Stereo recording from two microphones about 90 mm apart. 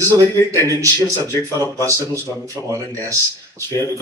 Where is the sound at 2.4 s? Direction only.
35° right (ahead or behind).